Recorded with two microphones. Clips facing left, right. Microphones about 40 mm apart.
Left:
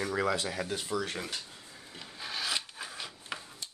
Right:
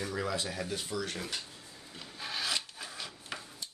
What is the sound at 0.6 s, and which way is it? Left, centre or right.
Speech, centre.